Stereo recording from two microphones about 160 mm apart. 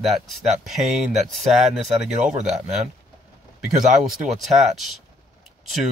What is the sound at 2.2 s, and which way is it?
Speech, 45° right (ahead or behind).